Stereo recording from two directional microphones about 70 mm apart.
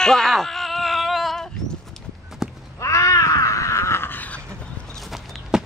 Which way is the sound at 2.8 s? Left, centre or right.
Left.